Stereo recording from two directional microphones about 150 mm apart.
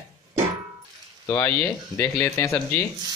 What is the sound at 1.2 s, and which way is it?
A man's voice, 20° left (ahead or behind).